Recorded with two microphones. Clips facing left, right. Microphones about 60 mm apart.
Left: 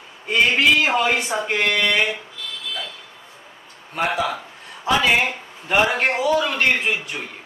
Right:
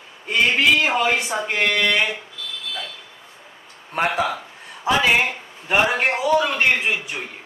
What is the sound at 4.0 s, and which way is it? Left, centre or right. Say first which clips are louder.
Speech: right 1 dB; right.